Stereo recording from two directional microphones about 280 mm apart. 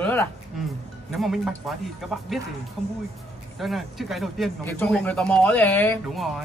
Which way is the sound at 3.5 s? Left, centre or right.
Centre.